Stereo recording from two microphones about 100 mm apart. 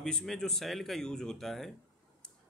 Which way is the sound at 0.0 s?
5° left (ahead or behind).